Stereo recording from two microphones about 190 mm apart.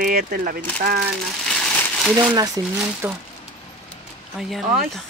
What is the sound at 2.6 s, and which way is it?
Speech, 20° right (ahead or behind).